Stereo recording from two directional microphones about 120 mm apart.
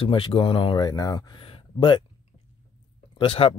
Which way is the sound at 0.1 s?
45° left (ahead or behind).